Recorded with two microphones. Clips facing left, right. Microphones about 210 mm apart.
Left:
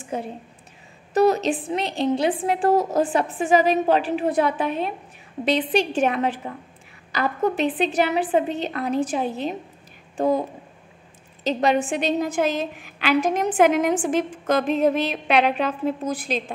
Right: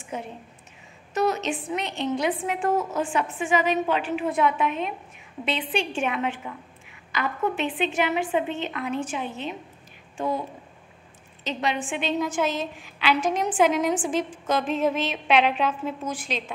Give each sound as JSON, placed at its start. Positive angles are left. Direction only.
{"t": 0.1, "sound": "a woman's voice", "side_deg": 35}
{"t": 11.4, "sound": "a woman's voice", "side_deg": 40}
{"t": 13.2, "sound": "a woman's voice", "side_deg": 55}
{"t": 14.6, "sound": "a woman's voice", "side_deg": 40}